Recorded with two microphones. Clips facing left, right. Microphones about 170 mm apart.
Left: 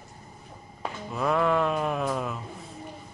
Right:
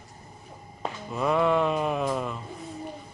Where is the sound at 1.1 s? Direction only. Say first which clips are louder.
Right 1 dB; centre (ahead or behind).